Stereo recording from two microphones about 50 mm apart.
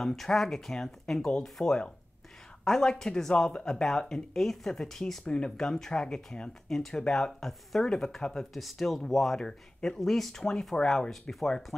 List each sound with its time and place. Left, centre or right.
0.0 s speech: centre
5.2 s speech: centre
5.6 s speech: centre
9.4 s speech: centre